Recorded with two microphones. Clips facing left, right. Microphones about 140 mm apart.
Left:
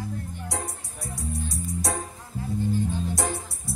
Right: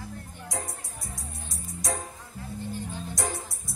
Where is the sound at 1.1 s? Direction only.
70° left (ahead or behind).